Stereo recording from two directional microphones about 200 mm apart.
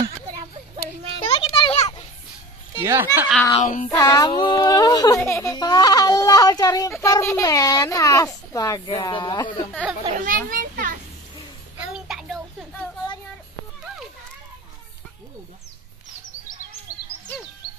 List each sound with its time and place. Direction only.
1.2 s children playing: 25° left (ahead or behind)
2.8 s speech: 15° right (ahead or behind)
3.2 s speech: centre (ahead or behind)
3.5 s child singing: 40° left (ahead or behind)
3.9 s speech: 20° left (ahead or behind)
10.0 s children playing: 40° right (ahead or behind)
11.9 s a sound: centre (ahead or behind)